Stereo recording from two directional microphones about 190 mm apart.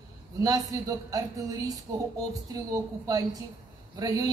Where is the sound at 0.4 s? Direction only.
20° right (ahead or behind).